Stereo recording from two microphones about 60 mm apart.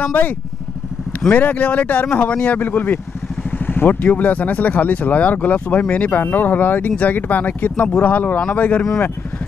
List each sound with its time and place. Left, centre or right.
0.0 s speech: left
1.3 s speech: left